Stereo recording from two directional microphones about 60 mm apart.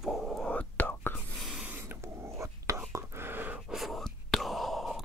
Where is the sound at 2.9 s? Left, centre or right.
Right.